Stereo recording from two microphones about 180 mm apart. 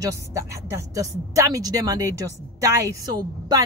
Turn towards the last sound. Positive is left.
turn(degrees=-20)  # may be behind; listen again after turning